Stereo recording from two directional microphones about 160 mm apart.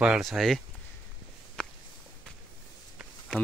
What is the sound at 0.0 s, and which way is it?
Speech, centre (ahead or behind).